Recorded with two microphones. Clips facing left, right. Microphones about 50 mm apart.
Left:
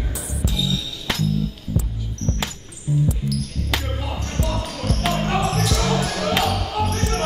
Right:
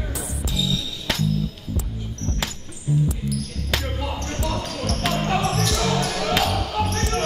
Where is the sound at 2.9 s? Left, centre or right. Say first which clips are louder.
Even; centre.